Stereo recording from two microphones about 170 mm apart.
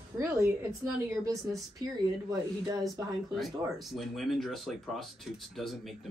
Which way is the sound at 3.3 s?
Centre (ahead or behind).